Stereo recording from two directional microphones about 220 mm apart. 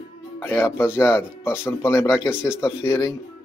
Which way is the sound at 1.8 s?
15° left (ahead or behind).